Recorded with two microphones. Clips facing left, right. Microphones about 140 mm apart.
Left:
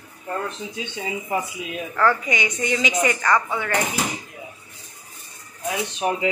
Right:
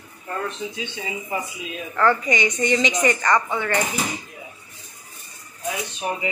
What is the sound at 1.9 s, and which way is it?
A woman's voice, 5° left (ahead or behind).